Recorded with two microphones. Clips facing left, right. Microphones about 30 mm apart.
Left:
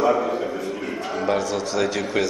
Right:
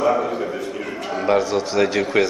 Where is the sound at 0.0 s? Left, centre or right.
Centre.